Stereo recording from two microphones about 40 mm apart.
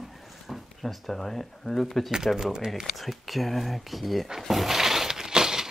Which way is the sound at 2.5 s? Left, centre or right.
Centre.